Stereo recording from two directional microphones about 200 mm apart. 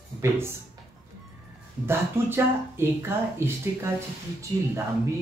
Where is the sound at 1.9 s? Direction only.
10° right (ahead or behind).